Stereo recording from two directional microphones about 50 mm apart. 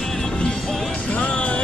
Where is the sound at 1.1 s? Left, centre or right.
Left.